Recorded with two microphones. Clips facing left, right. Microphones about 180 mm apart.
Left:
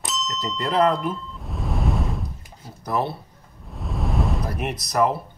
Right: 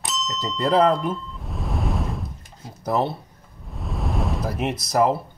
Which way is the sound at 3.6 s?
Centre (ahead or behind).